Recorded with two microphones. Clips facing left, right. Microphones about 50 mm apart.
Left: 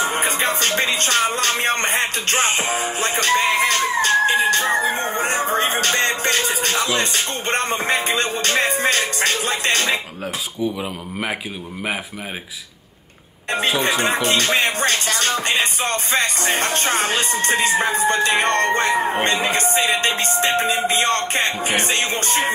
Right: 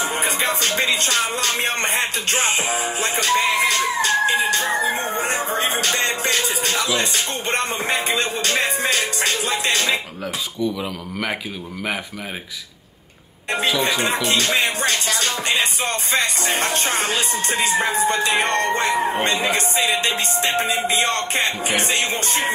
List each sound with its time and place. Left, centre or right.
0.0 s music: left
10.8 s speech: centre
13.5 s music: left